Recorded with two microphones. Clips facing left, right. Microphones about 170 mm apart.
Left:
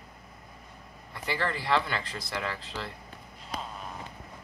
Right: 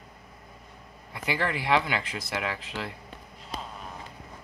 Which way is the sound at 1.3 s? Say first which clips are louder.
Right 2 dB; 15° right (ahead or behind).